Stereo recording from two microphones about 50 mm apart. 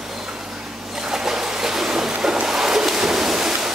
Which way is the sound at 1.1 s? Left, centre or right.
Centre.